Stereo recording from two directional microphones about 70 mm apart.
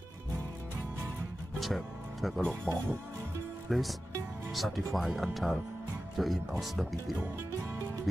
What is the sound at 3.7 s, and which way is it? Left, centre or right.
Speech, centre.